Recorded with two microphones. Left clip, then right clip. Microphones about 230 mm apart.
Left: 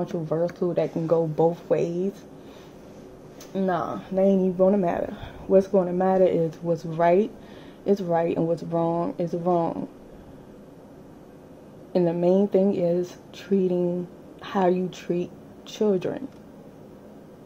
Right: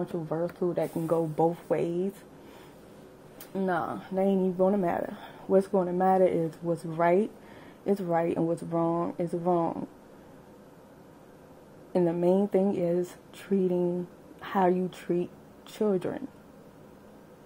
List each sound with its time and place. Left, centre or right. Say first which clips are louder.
0.3 s speech: left 5 dB; right
3.5 s speech: left 4 dB; right
11.9 s speech: left 4 dB; right